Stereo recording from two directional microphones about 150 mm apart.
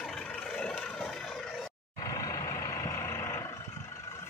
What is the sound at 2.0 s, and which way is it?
Vehicle, 25° left (ahead or behind).